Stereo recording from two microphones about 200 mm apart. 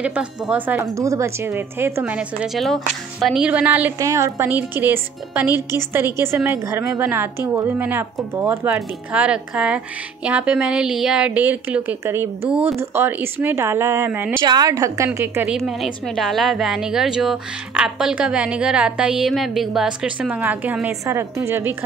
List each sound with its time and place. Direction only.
0.0 s a woman's voice: 5° right (ahead or behind)